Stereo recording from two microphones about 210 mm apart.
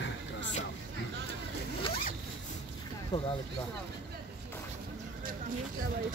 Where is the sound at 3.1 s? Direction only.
25° left (ahead or behind).